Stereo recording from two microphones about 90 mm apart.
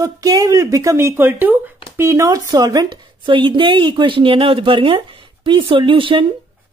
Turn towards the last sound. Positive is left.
turn(degrees=-75)  # may be behind; listen again after turning